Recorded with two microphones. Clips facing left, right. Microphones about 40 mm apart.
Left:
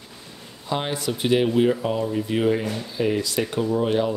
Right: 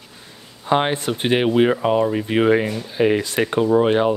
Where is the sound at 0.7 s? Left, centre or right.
Right.